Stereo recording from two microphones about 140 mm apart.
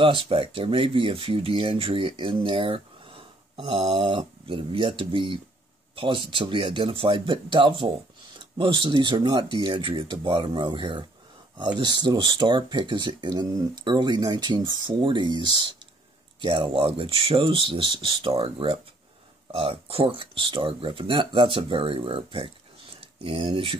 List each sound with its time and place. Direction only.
0.0 s speech: 35° right (ahead or behind)